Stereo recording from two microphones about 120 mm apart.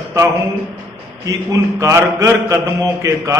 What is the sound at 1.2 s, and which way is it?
A man's voice, 25° right (ahead or behind).